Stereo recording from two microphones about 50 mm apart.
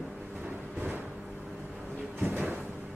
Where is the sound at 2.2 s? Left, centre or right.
Right.